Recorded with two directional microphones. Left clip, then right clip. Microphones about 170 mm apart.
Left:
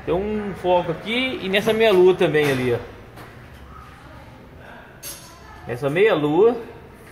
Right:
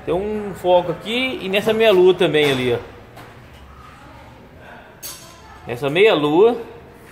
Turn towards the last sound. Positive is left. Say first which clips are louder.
# right 3 dB
turn(degrees=-25)  # may be behind; listen again after turning